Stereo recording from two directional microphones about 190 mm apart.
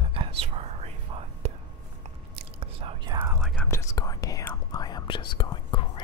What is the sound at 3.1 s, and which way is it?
Whispering, 10° right (ahead or behind).